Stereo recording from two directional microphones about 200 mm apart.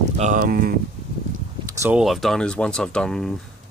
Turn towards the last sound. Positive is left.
turn(degrees=5)  # may be behind; listen again after turning